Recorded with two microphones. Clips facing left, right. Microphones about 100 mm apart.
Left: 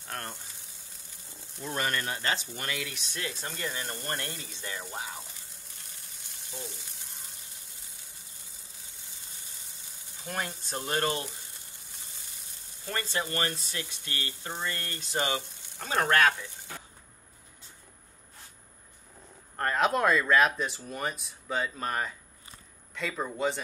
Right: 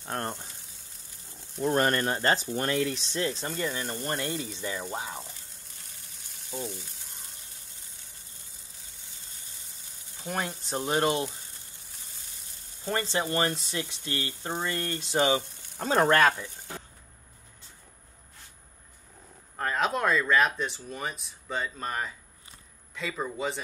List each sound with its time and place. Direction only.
0.1 s speech: 30° right (ahead or behind)
1.6 s speech: 45° right (ahead or behind); by 3.3 s 30° right (ahead or behind)
3.4 s speech: centre (ahead or behind)
6.5 s frying: centre (ahead or behind)
10.2 s frying: 5° right (ahead or behind)
10.7 s frying: 15° right (ahead or behind)
12.8 s speech: 25° right (ahead or behind)
14.5 s frying: 5° right (ahead or behind)
19.5 s speech: centre (ahead or behind)